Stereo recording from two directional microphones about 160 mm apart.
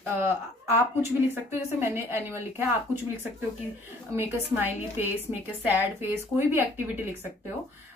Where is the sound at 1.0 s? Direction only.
15° right (ahead or behind).